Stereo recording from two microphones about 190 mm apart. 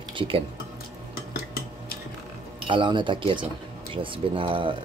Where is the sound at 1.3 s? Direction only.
55° left (ahead or behind).